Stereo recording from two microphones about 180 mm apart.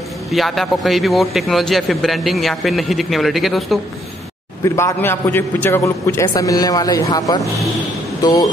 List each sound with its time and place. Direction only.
0.3 s speech: centre (ahead or behind)
4.6 s a man's voice: 15° left (ahead or behind)